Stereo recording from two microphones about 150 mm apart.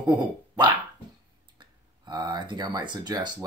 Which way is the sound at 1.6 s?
30° right (ahead or behind).